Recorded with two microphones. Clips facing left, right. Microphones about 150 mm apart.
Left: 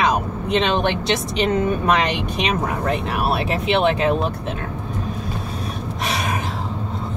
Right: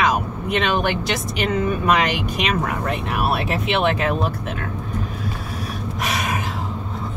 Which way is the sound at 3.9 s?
25° left (ahead or behind).